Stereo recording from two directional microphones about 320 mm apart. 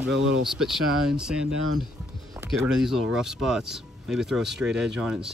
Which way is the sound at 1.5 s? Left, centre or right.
Right.